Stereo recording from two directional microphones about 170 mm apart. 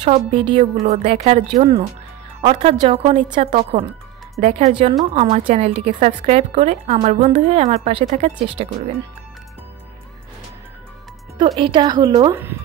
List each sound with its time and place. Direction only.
0.1 s a woman's voice: 35° right (ahead or behind)
11.3 s speech: 25° right (ahead or behind)